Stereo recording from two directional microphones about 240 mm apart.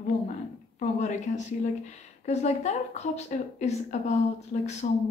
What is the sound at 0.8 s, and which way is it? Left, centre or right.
Speech, left.